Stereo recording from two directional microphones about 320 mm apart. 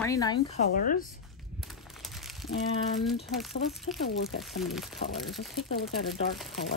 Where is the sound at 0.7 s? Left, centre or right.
Left.